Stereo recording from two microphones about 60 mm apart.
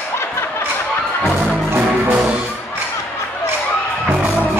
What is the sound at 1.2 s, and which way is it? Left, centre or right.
Music, right.